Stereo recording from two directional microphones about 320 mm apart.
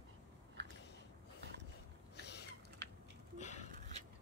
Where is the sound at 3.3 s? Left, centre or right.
Left.